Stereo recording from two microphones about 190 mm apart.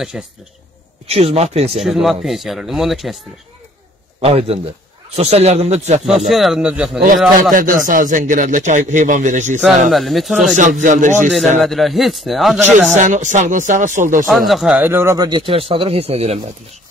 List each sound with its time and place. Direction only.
0.1 s speech: 5° right (ahead or behind)
1.1 s speech: 30° right (ahead or behind)
1.8 s speech: centre (ahead or behind)
4.2 s speech: 30° right (ahead or behind)
6.0 s speech: centre (ahead or behind)
7.5 s a man's voice: 45° right (ahead or behind)
9.6 s speech: centre (ahead or behind)
10.5 s speech: 40° right (ahead or behind)
11.6 s speech: centre (ahead or behind)
12.9 s speech: 40° right (ahead or behind)
14.2 s speech: centre (ahead or behind); by 16.3 s 35° right (ahead or behind)